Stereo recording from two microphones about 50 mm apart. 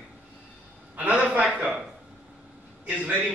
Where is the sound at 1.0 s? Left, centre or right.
Right.